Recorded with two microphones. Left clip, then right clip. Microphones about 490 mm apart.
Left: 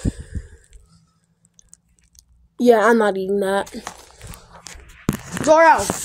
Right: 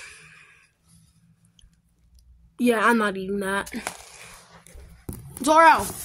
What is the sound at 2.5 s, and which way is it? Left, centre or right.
A woman's voice, right.